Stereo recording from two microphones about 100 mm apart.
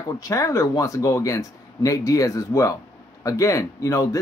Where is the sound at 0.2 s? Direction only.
35° left (ahead or behind).